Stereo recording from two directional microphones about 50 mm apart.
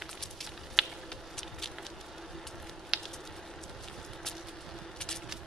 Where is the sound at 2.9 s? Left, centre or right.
Centre.